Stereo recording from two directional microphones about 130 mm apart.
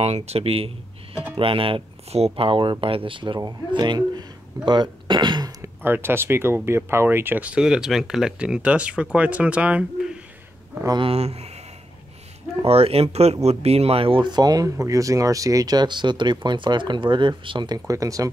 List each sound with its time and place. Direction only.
0.0 s speech: 55° right (ahead or behind); by 4.3 s 35° right (ahead or behind)
4.6 s throat clearing: 35° right (ahead or behind)
5.9 s speech: 15° right (ahead or behind)
10.9 s speech: 45° right (ahead or behind)
12.6 s speech: 50° right (ahead or behind); by 18.3 s 25° right (ahead or behind)